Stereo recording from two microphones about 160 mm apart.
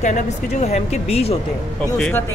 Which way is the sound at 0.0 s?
45° left (ahead or behind).